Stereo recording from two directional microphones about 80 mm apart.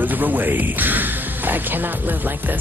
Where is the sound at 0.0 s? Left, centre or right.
Right.